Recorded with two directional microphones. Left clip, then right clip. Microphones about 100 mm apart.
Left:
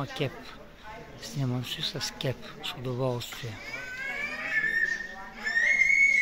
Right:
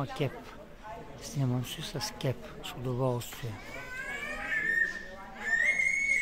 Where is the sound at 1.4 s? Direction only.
10° right (ahead or behind).